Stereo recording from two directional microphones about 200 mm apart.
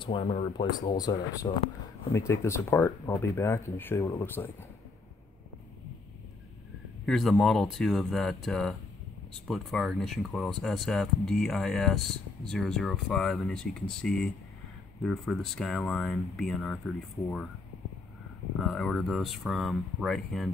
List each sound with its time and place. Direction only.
0.0 s speech: 25° left (ahead or behind)
7.1 s speech: centre (ahead or behind)
18.6 s speech: centre (ahead or behind)